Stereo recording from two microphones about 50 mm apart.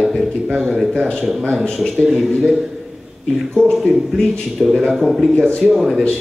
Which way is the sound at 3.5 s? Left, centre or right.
Centre.